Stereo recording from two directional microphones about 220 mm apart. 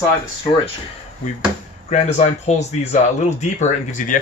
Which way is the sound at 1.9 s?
30° left (ahead or behind).